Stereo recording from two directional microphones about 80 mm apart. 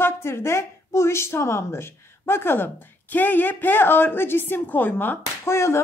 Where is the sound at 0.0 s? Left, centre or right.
Left.